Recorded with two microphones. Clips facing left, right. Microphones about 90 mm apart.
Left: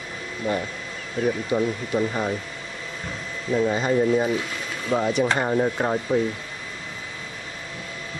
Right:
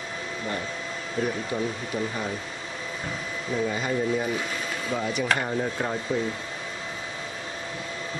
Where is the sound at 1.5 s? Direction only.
20° left (ahead or behind).